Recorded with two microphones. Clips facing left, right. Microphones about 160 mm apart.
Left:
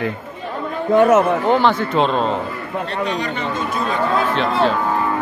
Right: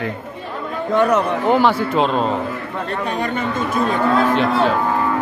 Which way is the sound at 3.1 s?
50° right (ahead or behind).